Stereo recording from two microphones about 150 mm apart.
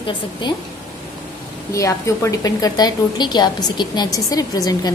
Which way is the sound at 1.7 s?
20° left (ahead or behind).